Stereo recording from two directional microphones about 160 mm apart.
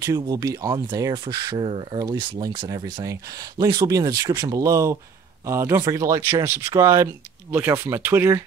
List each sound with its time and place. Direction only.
0.0 s speech: 20° right (ahead or behind)